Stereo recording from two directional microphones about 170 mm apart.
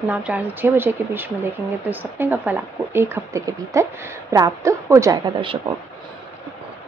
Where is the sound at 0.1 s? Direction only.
10° right (ahead or behind); by 5.6 s 30° right (ahead or behind).